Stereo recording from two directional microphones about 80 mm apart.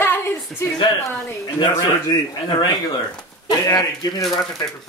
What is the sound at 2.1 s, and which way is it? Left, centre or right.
Speech, left.